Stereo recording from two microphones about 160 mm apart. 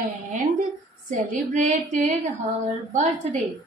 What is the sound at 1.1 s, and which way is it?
A woman's voice, 50° right (ahead or behind).